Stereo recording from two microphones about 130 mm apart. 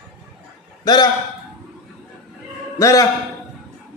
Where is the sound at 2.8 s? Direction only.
25° left (ahead or behind).